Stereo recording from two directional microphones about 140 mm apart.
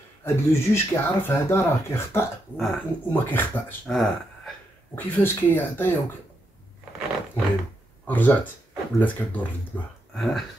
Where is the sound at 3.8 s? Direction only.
Centre (ahead or behind).